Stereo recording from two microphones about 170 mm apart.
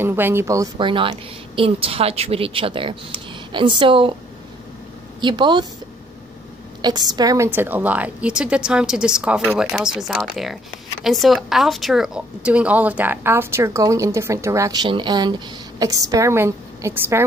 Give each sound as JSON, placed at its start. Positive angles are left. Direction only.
{"t": 0.0, "sound": "a woman's voice", "side_deg": -15}
{"t": 5.2, "sound": "speech", "side_deg": -25}
{"t": 6.8, "sound": "a woman's voice", "side_deg": -25}